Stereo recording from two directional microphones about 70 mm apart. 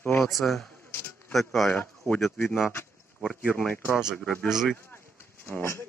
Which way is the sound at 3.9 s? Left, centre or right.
Centre.